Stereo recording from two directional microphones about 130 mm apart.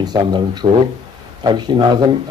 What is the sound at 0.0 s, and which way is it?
Speech, 35° right (ahead or behind).